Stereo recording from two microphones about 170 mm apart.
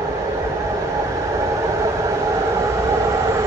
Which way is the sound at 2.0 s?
15° right (ahead or behind).